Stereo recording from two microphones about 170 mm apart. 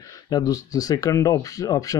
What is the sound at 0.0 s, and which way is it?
Speech, 20° left (ahead or behind).